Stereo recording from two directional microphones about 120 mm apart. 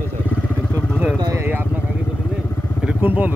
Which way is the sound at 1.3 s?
20° right (ahead or behind).